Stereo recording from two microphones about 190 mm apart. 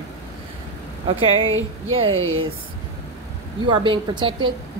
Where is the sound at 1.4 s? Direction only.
90° right.